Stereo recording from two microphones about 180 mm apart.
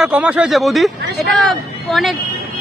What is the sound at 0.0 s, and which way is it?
Speech, 5° right (ahead or behind).